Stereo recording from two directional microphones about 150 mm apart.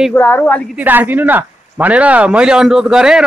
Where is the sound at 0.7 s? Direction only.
10° right (ahead or behind).